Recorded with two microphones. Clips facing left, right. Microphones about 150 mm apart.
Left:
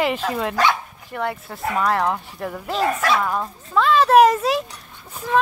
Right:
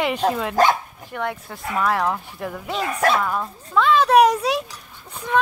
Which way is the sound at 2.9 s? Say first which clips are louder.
Right 1 dB; 50° right (ahead or behind).